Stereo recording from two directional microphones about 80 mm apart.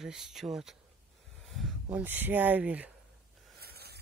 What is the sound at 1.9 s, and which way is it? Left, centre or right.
Speech, right.